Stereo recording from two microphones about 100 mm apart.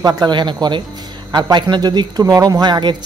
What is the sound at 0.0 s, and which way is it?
Speech, 45° right (ahead or behind).